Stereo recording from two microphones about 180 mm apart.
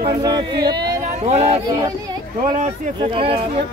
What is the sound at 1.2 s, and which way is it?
Speech, 35° right (ahead or behind).